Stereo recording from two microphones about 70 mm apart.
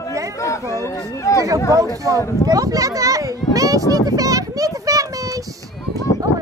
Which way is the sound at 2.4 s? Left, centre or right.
Right.